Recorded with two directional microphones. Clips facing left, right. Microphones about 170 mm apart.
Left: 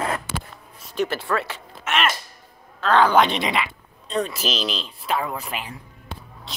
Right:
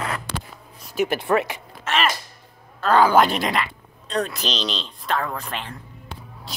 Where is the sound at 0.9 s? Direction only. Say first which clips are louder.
Right 3 dB; 15° right (ahead or behind).